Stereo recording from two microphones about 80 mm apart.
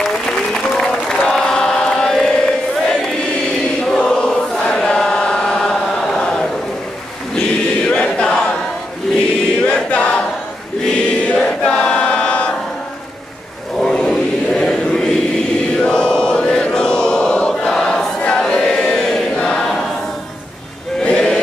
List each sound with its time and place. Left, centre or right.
0.0 s applause: centre
3.8 s chant: centre
7.3 s choir: centre
9.7 s choir: centre
13.7 s a sound: centre
15.7 s chant: centre
21.0 s male singing: centre